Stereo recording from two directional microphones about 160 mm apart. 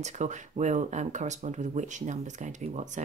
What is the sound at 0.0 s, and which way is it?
Speech, 50° right (ahead or behind).